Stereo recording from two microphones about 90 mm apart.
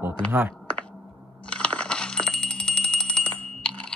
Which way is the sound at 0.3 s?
20° right (ahead or behind).